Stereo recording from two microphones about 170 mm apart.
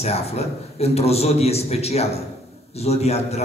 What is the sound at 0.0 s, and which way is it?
A man's voice, 40° left (ahead or behind).